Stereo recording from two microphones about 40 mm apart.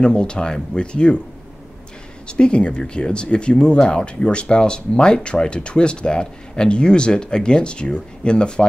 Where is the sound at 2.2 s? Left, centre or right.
Left.